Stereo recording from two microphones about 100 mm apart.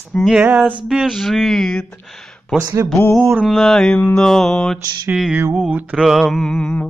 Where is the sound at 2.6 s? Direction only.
30° right (ahead or behind).